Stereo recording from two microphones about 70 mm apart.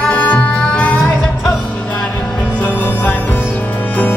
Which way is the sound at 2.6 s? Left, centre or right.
Left.